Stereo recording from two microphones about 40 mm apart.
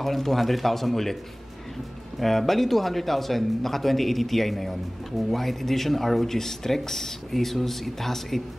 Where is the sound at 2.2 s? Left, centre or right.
Centre.